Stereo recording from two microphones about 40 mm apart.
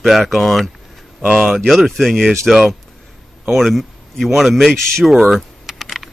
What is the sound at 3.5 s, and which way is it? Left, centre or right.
Speech, centre.